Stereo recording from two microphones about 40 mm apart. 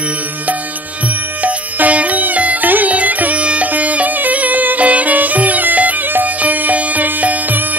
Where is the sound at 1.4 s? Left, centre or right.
Right.